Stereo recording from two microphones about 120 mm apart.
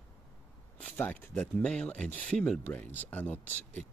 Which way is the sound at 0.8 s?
15° left (ahead or behind).